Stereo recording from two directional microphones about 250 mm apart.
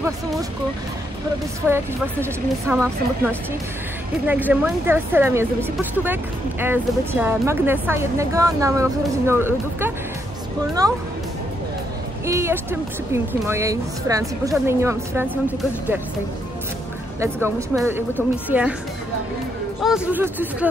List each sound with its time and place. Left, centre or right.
1.6 s speech: centre
4.3 s speech: centre
12.3 s speech: centre
17.2 s speech: centre
19.8 s speech: centre